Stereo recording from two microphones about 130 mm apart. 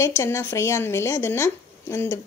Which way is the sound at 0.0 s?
20° left (ahead or behind).